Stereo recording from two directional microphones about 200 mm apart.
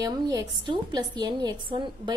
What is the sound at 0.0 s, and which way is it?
A woman's voice, 20° right (ahead or behind).